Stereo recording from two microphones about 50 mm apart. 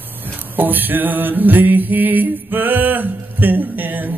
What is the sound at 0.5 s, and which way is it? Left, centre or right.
Mantra, right.